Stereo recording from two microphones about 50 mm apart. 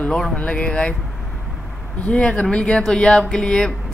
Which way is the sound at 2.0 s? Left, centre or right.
Left.